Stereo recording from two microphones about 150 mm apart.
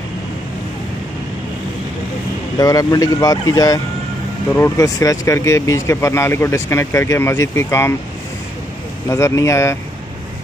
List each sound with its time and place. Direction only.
2.6 s speech: 25° left (ahead or behind)
9.1 s speech: 20° left (ahead or behind)